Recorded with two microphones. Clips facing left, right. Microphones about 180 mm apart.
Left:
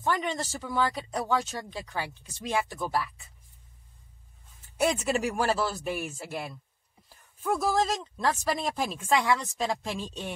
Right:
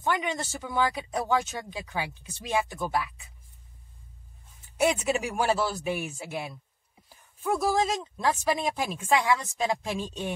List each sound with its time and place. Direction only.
0.1 s speech: 5° right (ahead or behind)
1.2 s speech: 20° right (ahead or behind)
1.5 s speech: 5° right (ahead or behind)
4.7 s speech: centre (ahead or behind)